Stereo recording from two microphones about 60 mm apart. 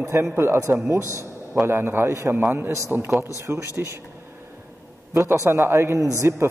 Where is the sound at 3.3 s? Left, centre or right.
Right.